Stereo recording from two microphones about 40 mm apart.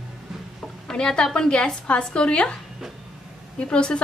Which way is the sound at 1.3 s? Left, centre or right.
Left.